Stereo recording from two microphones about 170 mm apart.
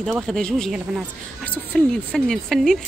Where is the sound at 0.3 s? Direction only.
5° left (ahead or behind).